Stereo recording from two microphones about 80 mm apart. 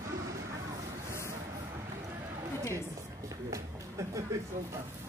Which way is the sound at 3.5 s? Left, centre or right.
Right.